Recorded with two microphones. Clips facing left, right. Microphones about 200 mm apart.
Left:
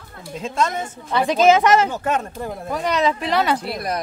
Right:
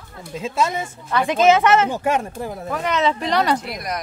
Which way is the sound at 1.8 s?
10° right (ahead or behind).